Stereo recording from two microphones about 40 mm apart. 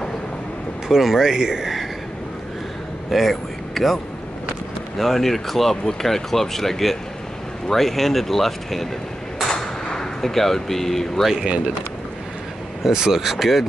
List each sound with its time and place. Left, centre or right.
0.8 s speech: centre
3.1 s speech: centre
9.5 s gunshot: centre
11.4 s speech: right
12.8 s speech: centre